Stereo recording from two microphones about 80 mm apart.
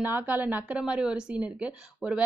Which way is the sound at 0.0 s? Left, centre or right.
Right.